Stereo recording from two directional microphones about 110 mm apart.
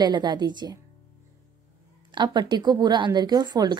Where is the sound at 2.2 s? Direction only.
40° right (ahead or behind).